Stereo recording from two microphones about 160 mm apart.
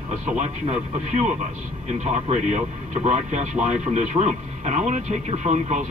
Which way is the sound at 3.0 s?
45° right (ahead or behind).